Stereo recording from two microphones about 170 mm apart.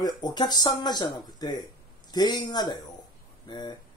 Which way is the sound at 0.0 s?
25° left (ahead or behind).